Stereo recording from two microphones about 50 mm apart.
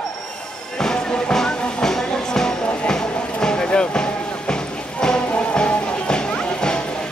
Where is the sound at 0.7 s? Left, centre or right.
Centre.